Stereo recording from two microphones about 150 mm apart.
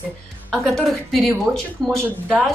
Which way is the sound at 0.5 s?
Centre (ahead or behind).